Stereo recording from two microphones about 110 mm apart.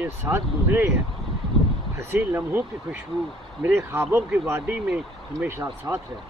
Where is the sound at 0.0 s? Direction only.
20° right (ahead or behind).